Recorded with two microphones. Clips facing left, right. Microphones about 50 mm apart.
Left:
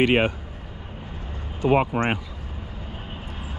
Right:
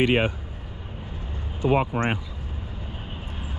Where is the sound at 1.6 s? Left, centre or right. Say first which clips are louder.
Left 2 dB; left.